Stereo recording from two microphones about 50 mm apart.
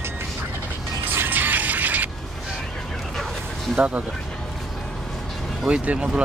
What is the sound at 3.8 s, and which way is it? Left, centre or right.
Speech, right.